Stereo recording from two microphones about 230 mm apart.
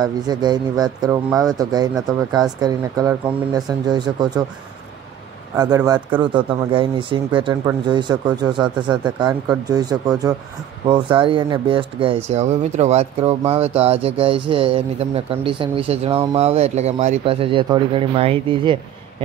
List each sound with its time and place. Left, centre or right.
0.0 s speech: centre
5.9 s speech: centre
6.3 s speech: right